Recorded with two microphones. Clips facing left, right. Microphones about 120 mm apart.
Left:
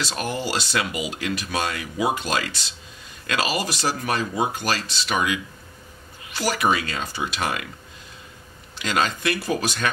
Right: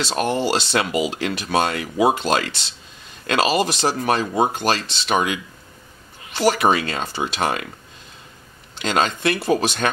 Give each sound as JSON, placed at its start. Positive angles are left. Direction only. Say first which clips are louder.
{"t": 0.2, "sound": "speech", "louder": "right 7 dB", "side_deg": -25}
{"t": 8.8, "sound": "speech", "louder": "right 3 dB", "side_deg": -30}